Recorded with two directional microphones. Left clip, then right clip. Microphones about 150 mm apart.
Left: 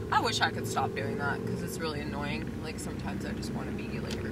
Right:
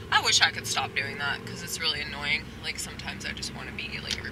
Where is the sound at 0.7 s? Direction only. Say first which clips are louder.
Right 2 dB; 30° right (ahead or behind).